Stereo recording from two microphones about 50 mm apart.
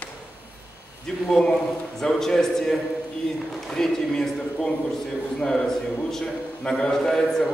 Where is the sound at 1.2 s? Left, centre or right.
Centre.